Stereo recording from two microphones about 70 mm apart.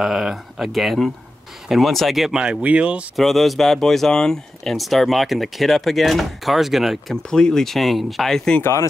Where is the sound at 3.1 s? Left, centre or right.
Centre.